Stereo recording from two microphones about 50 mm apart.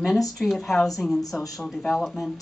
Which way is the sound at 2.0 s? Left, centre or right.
Centre.